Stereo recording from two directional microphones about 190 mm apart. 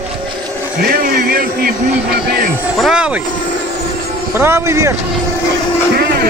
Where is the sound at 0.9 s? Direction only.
50° right (ahead or behind).